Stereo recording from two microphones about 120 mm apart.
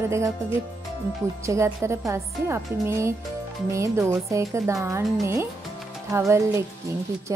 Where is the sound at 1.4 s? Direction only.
25° right (ahead or behind).